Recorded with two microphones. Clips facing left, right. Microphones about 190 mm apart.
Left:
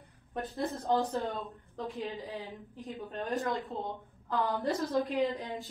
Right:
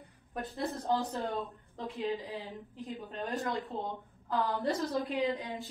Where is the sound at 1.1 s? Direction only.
Centre (ahead or behind).